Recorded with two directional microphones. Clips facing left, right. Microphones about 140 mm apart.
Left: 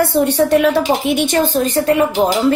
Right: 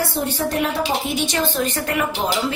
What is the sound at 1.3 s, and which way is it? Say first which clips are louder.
Speech: left 7 dB; 40° left (ahead or behind).